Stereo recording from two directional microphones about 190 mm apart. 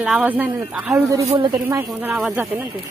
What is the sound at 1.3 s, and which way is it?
Speech, 25° right (ahead or behind).